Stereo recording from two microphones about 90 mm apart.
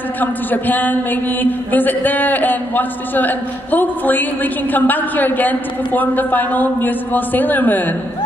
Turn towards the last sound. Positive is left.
turn(degrees=20)  # may be behind; listen again after turning